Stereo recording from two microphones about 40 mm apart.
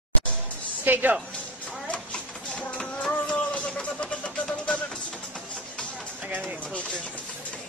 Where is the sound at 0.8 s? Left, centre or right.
Right.